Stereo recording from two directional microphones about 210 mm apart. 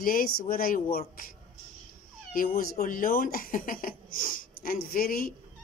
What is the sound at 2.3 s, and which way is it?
A woman's voice, 40° left (ahead or behind).